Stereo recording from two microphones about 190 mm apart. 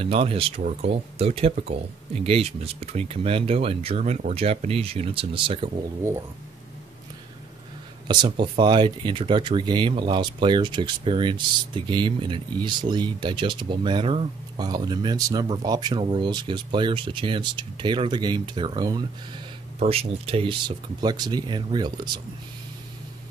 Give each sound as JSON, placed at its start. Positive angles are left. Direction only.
{"t": 0.0, "sound": "speech", "side_deg": -30}
{"t": 8.1, "sound": "speech", "side_deg": -25}